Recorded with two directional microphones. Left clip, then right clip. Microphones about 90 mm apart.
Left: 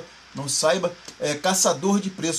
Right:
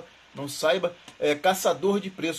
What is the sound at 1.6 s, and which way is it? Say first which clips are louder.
Speech: left 2 dB; 25° left (ahead or behind).